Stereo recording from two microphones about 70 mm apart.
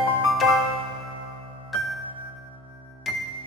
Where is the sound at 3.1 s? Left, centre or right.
Centre.